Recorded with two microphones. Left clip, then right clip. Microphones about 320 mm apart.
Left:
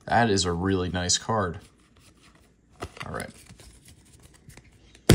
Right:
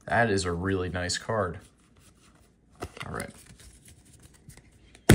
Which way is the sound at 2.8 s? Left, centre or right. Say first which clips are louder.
Left 2 dB; centre.